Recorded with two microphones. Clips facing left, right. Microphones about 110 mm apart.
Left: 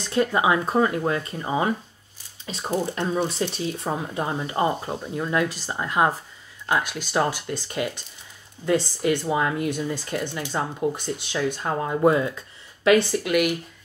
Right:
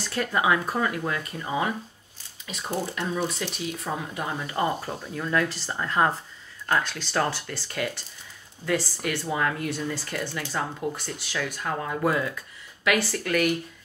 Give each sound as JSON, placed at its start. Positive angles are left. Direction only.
{"t": 0.0, "sound": "speech", "side_deg": 20}